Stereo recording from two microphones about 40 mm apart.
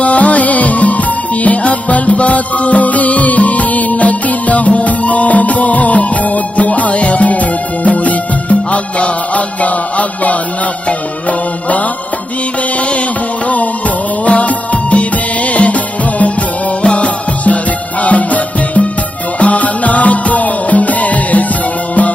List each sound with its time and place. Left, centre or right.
0.0 s music: left
13.5 s music: left